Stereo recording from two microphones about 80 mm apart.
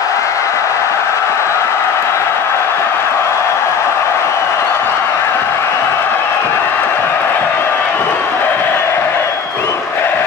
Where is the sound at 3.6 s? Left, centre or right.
Left.